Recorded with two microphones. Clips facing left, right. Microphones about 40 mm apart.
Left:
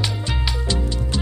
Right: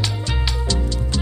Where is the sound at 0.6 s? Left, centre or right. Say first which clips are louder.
Even; centre.